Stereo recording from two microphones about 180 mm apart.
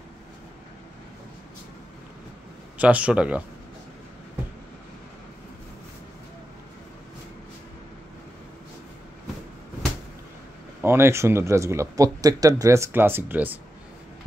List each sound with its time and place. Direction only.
2.8 s speech: 5° right (ahead or behind)
10.8 s speech: 15° right (ahead or behind)